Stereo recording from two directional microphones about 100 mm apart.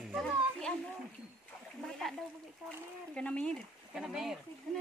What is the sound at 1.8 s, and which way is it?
Splash, 5° left (ahead or behind).